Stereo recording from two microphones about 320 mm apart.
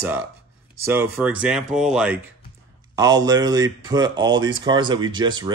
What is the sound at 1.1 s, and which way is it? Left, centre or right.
A man's voice, centre.